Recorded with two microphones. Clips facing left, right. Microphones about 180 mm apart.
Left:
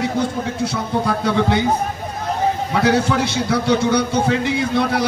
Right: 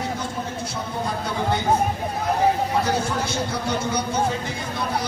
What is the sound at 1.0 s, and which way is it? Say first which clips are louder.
Speech: left 6 dB; 80° left.